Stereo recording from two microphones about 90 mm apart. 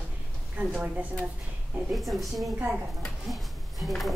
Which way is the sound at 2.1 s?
Centre (ahead or behind).